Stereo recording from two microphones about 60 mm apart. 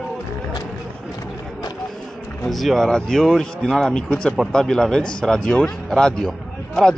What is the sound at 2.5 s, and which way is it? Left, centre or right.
Speech, centre.